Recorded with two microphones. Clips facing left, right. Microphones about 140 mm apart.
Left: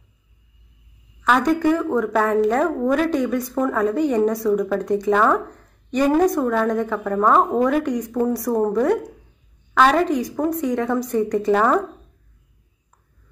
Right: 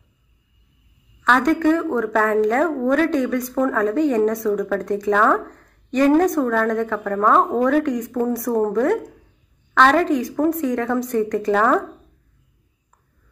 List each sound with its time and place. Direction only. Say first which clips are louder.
1.2 s a woman's voice: right 1 dB; 5° left (ahead or behind)